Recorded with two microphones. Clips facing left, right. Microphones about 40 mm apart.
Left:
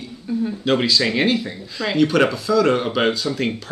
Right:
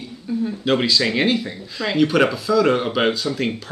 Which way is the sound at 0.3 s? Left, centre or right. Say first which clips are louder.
Even; centre.